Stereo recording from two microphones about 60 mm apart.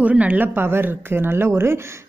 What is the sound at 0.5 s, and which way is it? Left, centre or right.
A woman's voice, right.